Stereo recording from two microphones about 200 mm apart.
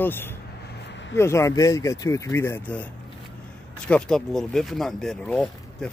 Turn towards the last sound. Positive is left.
turn(degrees=5)  # may be behind; listen again after turning